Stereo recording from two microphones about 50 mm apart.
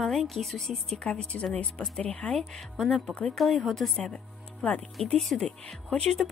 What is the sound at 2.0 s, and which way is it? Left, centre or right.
A woman's voice, left.